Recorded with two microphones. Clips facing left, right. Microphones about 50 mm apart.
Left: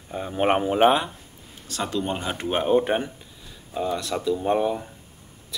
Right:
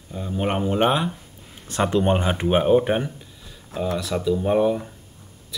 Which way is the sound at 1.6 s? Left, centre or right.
Right.